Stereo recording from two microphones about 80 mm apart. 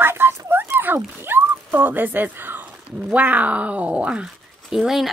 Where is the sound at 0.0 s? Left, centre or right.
Right.